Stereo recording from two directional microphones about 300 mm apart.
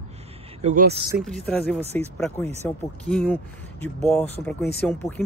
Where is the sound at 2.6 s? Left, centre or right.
Centre.